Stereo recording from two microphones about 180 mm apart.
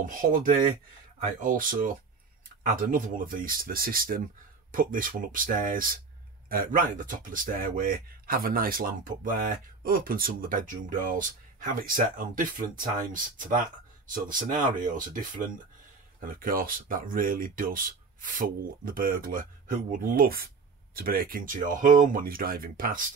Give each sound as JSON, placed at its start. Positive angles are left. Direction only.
{"t": 0.0, "sound": "speech", "side_deg": -50}